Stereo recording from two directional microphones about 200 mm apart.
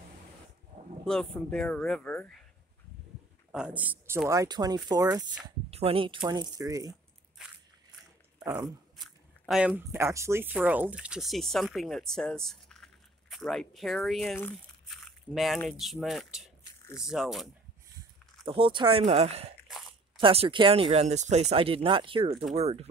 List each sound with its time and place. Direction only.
1.0 s speech: 5° left (ahead or behind)
3.5 s speech: 5° right (ahead or behind)
5.4 s speech: 30° right (ahead or behind)
7.4 s crushing: 5° right (ahead or behind)
8.5 s speech: 20° right (ahead or behind)
8.9 s speech: centre (ahead or behind)
18.5 s speech: 25° right (ahead or behind)